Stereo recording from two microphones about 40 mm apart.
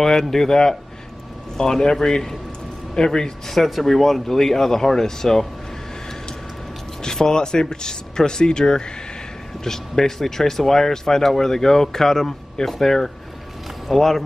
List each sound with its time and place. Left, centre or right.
0.0 s speech: centre
3.5 s speech: centre
7.0 s speech: centre